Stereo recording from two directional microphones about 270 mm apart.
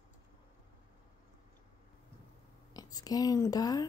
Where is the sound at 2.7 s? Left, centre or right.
Centre.